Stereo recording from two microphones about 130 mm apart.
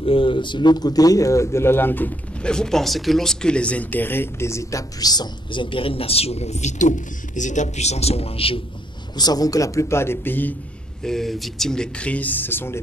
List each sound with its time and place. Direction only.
0.0 s speech: 45° left (ahead or behind)
9.1 s a man's voice: 30° left (ahead or behind); by 10.5 s 15° left (ahead or behind)
11.0 s speech: 5° left (ahead or behind)